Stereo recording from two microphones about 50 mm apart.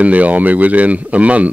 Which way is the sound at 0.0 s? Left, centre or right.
Right.